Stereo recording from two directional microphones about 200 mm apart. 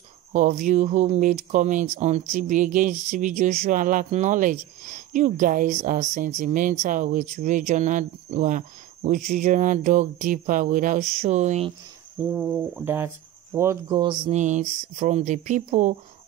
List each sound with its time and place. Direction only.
0.3 s speech: 40° right (ahead or behind)
12.3 s cricket: 5° right (ahead or behind)
13.8 s speech: 25° right (ahead or behind)
14.3 s speech: 35° right (ahead or behind)